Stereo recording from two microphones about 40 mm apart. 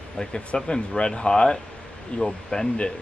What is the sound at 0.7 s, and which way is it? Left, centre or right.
Speech, left.